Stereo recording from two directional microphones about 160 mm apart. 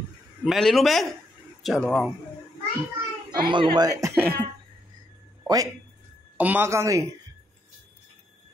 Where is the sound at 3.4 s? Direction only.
30° right (ahead or behind).